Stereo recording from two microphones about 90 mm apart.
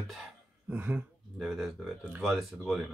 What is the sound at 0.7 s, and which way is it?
Speech, 20° right (ahead or behind).